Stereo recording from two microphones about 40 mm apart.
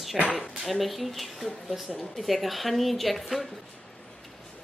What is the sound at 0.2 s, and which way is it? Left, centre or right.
Speech, right.